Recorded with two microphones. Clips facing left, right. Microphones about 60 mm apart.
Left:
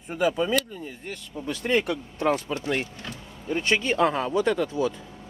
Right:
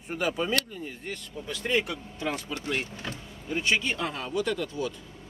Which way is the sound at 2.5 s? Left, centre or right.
Left.